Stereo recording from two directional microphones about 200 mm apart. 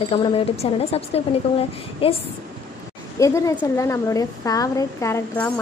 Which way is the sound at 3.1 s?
15° left (ahead or behind).